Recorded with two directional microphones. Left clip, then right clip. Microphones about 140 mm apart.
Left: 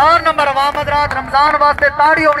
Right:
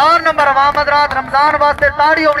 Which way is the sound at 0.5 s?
30° right (ahead or behind).